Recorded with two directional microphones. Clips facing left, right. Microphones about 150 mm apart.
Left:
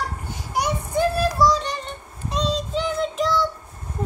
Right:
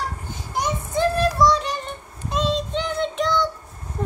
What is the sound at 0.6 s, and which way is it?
Child singing, 10° left (ahead or behind).